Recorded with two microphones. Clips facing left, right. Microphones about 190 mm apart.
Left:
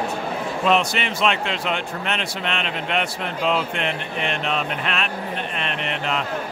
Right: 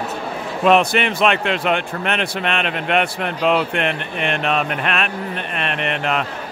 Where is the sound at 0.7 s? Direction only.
60° right (ahead or behind).